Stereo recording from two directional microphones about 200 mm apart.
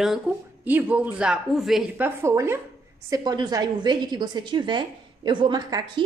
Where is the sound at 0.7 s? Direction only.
10° right (ahead or behind).